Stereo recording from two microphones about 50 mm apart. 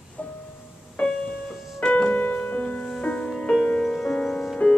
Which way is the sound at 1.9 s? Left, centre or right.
Left.